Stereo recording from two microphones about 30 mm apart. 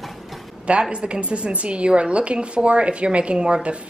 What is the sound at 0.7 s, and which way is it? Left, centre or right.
A woman's voice, right.